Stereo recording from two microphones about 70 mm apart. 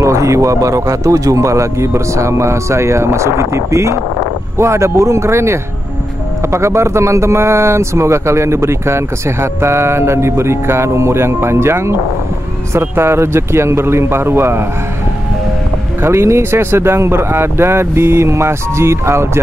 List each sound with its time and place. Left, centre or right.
0.0 s speech: right
16.0 s speech: right